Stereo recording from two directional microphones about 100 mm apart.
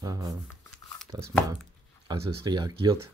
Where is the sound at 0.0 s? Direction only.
35° right (ahead or behind).